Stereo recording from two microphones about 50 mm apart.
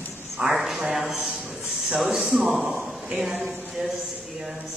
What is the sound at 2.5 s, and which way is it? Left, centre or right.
Speech, centre.